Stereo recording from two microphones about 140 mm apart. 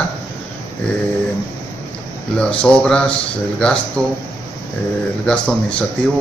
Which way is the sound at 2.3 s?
10° left (ahead or behind).